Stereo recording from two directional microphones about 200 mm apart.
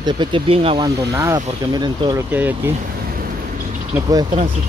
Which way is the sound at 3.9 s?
15° right (ahead or behind).